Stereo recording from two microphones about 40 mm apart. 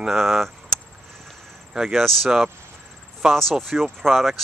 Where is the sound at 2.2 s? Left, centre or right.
Centre.